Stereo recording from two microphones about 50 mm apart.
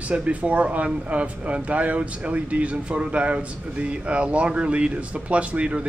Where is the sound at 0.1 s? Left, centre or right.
Right.